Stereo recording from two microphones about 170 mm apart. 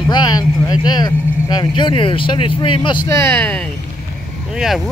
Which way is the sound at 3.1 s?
15° left (ahead or behind).